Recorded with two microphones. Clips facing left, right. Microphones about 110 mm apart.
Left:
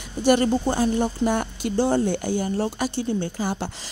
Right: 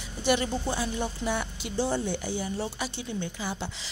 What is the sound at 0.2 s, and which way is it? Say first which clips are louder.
Speech: left 8 dB; 45° left (ahead or behind).